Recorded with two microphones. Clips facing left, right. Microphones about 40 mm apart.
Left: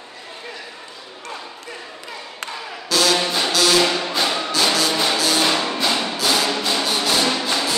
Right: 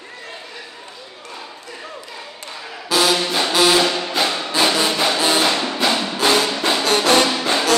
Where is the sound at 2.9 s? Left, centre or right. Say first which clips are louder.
Right 1 dB; centre.